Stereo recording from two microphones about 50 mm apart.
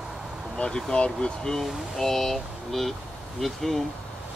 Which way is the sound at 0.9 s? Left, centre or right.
Centre.